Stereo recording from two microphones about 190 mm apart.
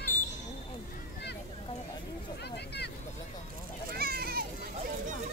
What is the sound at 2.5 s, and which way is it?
Vehicle, 60° left (ahead or behind).